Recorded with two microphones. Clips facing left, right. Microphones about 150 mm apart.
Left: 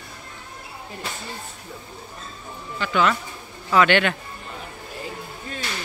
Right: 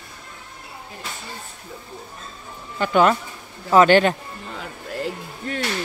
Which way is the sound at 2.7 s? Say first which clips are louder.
Right 4 dB; 45° right (ahead or behind).